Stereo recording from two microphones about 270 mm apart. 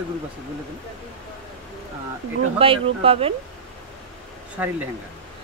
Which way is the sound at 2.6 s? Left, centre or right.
Right.